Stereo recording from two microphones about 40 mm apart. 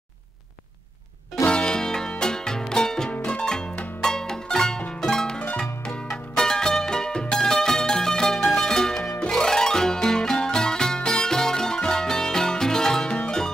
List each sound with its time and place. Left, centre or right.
1.4 s music: left
5.0 s harp: centre
6.3 s music: centre